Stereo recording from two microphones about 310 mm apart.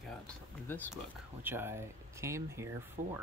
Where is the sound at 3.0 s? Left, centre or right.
Right.